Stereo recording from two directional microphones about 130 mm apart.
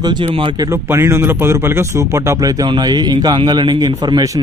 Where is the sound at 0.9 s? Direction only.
20° right (ahead or behind).